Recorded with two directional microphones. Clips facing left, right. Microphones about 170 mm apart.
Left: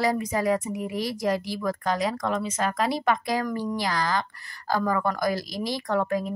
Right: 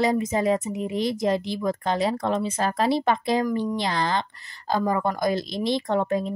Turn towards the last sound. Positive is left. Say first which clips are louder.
# right 2 dB
turn(degrees=-25)  # may be behind; listen again after turning